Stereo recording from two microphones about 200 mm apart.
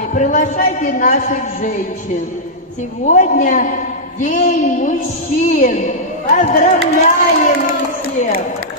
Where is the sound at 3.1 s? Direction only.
40° left (ahead or behind).